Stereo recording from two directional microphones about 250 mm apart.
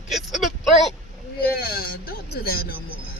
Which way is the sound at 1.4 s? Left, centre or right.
Left.